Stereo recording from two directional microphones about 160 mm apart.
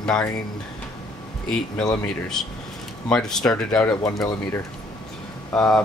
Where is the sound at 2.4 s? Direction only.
5° left (ahead or behind).